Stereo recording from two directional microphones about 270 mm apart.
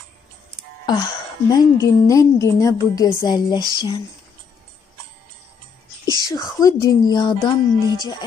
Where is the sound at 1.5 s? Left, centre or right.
Centre.